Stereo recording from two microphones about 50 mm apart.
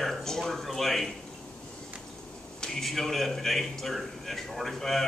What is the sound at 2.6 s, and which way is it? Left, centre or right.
A man's voice, centre.